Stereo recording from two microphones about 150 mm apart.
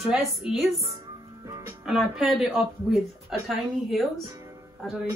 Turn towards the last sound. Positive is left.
turn(degrees=0)  # may be behind; listen again after turning